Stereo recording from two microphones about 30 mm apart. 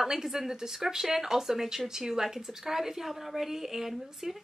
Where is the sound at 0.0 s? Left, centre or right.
Centre.